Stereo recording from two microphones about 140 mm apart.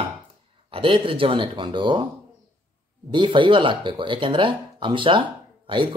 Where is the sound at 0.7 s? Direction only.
40° right (ahead or behind).